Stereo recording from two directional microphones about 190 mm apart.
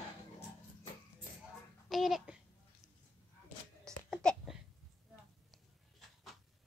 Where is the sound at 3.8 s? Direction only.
5° left (ahead or behind).